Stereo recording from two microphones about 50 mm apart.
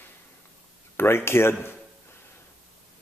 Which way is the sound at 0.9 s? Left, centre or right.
Left.